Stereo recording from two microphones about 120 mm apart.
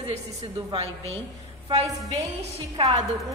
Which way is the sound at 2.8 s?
50° right (ahead or behind).